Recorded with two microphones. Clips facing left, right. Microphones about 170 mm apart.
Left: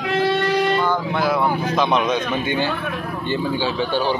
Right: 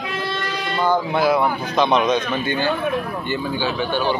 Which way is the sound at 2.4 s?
25° left (ahead or behind).